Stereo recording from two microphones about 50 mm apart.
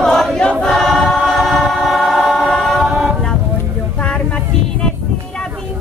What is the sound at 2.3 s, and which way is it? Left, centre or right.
Choir, centre.